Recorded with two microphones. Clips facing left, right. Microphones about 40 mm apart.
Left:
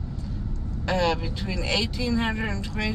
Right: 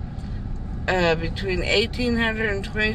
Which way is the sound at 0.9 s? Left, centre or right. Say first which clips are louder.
Right 4 dB; right.